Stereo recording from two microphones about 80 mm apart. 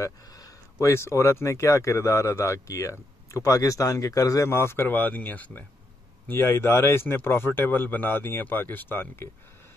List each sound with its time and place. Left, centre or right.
0.0 s speech: left